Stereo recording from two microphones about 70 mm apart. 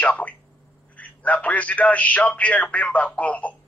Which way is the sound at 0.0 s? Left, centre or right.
Left.